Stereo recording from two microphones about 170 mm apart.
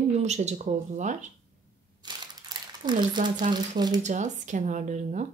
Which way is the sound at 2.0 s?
25° right (ahead or behind).